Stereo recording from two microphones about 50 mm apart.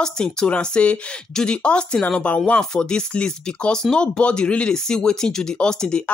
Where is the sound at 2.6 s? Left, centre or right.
Centre.